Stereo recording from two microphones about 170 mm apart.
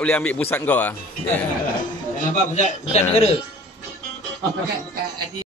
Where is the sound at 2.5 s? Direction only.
40° left (ahead or behind).